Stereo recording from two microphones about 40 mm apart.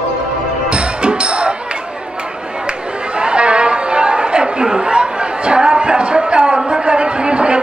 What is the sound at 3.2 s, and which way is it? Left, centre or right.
Chatter, right.